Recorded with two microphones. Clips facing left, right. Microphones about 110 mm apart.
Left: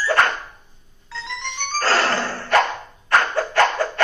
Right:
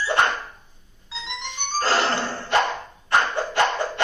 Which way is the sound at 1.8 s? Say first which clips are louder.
Left 2 dB; 20° right (ahead or behind).